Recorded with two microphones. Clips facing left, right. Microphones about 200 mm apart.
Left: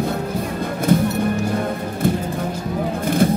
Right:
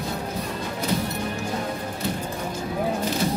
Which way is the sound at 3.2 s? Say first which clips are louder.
Left 11 dB; 55° left (ahead or behind).